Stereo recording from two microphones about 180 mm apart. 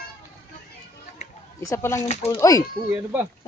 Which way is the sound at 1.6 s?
15° left (ahead or behind).